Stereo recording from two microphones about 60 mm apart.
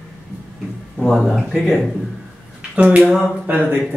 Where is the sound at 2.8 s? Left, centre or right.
Right.